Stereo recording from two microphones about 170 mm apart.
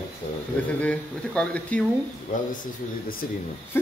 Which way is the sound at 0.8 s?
5° left (ahead or behind).